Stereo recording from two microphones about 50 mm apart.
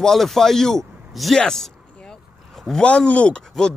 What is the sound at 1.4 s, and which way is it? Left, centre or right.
Speech, centre.